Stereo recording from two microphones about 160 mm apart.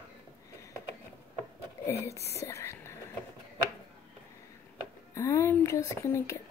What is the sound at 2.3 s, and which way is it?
Whispering, 20° left (ahead or behind).